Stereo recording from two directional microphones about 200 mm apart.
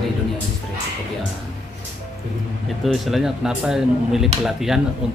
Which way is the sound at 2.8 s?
Centre (ahead or behind).